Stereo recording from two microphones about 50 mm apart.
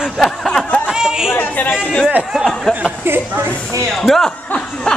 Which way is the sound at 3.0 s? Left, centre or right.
Right.